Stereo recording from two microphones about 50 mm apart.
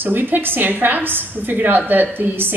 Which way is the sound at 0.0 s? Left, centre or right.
Right.